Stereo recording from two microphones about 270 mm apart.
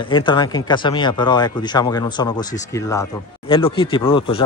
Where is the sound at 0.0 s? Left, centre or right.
Centre.